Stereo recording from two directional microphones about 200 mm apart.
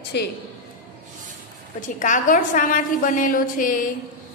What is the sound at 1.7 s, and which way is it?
A woman's voice, 40° left (ahead or behind).